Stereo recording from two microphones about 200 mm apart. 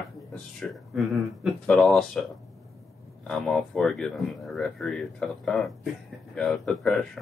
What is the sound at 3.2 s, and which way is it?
Speech, centre (ahead or behind).